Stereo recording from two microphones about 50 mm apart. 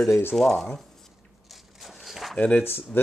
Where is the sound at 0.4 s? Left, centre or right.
Centre.